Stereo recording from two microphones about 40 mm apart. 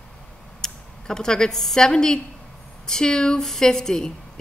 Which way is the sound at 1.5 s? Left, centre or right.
Centre.